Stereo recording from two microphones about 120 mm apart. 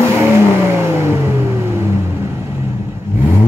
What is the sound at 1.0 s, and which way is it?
Vehicle, 20° right (ahead or behind).